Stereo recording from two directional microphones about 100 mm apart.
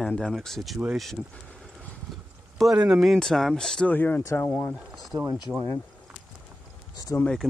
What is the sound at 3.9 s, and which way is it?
Speech, 15° left (ahead or behind).